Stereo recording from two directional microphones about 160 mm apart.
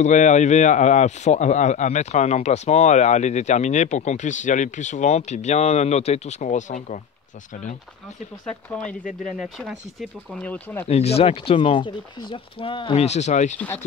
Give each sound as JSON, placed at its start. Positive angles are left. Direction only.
{"t": 0.0, "sound": "speech", "side_deg": 50}
{"t": 8.5, "sound": "speech", "side_deg": 10}
{"t": 10.9, "sound": "speech", "side_deg": 40}